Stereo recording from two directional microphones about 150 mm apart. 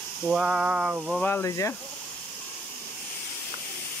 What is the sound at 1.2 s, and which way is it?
Speech, 15° left (ahead or behind).